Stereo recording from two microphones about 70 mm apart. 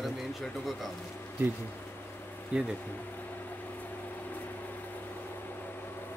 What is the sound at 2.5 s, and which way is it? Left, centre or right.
Speech, centre.